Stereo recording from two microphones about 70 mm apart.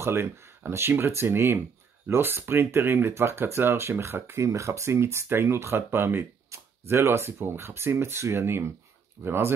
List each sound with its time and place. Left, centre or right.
0.0 s speech: right